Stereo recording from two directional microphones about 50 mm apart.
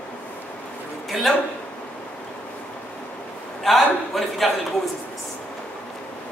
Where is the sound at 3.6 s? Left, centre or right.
Centre.